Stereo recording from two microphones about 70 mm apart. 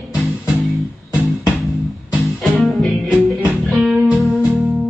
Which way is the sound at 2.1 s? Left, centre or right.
Centre.